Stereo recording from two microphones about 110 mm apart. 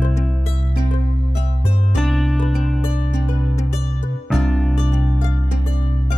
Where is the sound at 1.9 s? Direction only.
Centre (ahead or behind).